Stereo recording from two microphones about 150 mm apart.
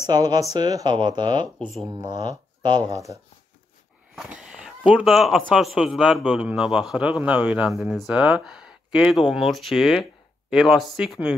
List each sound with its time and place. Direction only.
0.0 s speech: 25° right (ahead or behind)
1.6 s speech: centre (ahead or behind)
1.9 s speech: 30° right (ahead or behind)
4.1 s speech: 5° right (ahead or behind)